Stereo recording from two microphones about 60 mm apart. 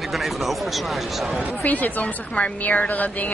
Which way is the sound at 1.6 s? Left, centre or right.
Left.